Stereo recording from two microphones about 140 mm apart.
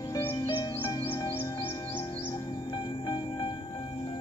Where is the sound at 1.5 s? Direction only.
35° left (ahead or behind).